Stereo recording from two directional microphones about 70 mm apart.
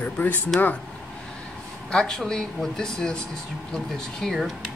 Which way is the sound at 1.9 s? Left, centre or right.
Centre.